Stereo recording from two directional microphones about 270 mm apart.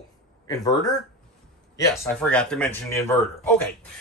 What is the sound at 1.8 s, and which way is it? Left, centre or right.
Speech, centre.